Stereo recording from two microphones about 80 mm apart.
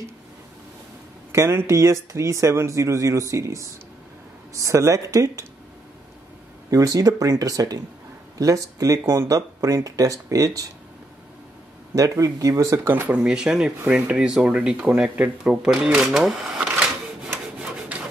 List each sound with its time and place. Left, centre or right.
1.3 s speech: right
6.7 s speech: right
9.0 s speech: right
9.3 s speech: right
11.9 s speech: right
12.8 s speech: right
13.1 s speech: centre
17.6 s rub: centre